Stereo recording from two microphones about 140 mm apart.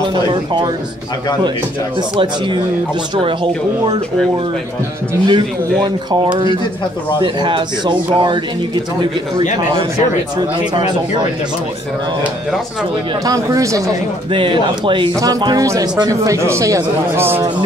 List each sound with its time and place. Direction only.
0.1 s speech: 35° right (ahead or behind)
2.0 s speech: 35° right (ahead or behind)
5.2 s speech: 30° right (ahead or behind)
13.2 s speech: 25° right (ahead or behind)
14.3 s speech: 35° right (ahead or behind)
15.1 s speech: 25° right (ahead or behind)